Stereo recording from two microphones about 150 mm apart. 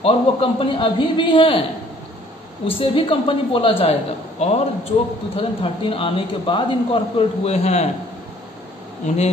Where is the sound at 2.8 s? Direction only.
35° left (ahead or behind).